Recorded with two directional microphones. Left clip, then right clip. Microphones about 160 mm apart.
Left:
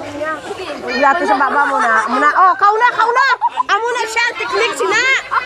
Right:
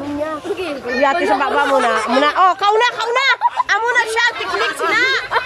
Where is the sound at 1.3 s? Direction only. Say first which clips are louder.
Left 1 dB; 20° right (ahead or behind).